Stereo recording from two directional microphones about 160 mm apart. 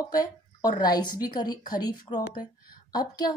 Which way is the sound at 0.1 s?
25° left (ahead or behind).